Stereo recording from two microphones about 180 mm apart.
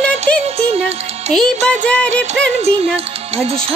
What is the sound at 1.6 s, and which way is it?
Music, 5° left (ahead or behind).